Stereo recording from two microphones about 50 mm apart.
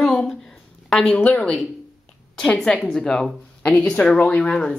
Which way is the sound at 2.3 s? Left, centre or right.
Centre.